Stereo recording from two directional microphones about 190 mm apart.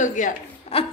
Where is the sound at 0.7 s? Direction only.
30° left (ahead or behind).